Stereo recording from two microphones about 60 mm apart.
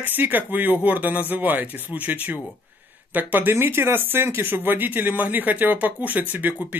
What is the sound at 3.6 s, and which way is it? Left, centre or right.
Speech, right.